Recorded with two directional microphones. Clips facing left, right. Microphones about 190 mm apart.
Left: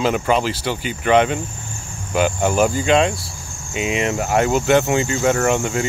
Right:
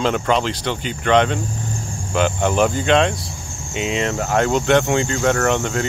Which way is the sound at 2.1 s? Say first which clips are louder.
Left 1 dB; 5° left (ahead or behind).